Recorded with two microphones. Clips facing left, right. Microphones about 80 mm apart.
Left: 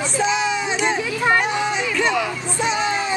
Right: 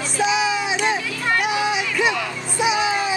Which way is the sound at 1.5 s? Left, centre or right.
Centre.